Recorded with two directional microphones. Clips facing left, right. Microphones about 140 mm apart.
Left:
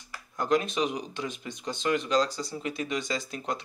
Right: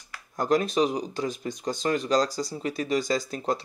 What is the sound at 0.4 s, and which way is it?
Speech, 40° right (ahead or behind).